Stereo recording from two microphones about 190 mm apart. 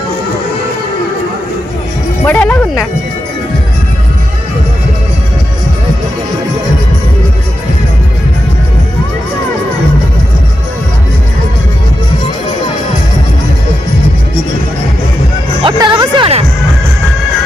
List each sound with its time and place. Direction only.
2.2 s music: 10° left (ahead or behind)
15.6 s music: 25° right (ahead or behind)